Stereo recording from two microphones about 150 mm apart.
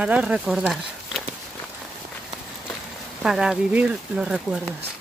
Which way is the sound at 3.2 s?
5° right (ahead or behind).